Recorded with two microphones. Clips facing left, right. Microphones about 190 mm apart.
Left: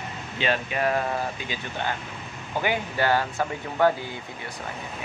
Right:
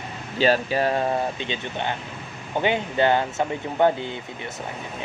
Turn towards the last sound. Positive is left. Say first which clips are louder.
# right 4 dB
turn(degrees=-20)  # may be behind; listen again after turning